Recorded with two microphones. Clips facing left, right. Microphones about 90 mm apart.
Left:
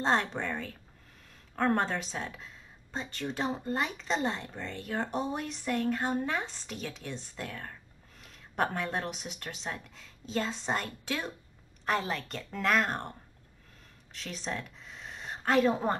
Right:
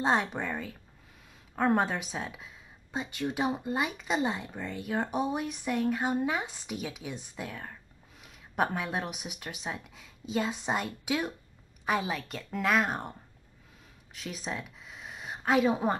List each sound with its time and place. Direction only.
0.0 s a woman's voice: 5° right (ahead or behind)
14.1 s speech: 5° right (ahead or behind)